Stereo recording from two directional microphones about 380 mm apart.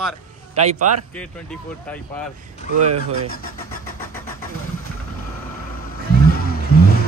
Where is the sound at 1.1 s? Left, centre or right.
Centre.